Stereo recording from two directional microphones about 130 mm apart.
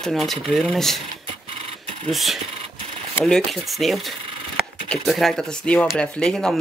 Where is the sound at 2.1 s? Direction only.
Centre (ahead or behind).